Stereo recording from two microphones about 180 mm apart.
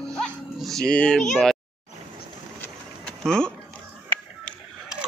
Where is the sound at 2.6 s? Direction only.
5° left (ahead or behind).